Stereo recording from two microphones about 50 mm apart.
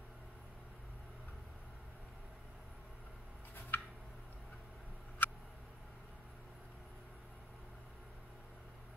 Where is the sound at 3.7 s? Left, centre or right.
Left.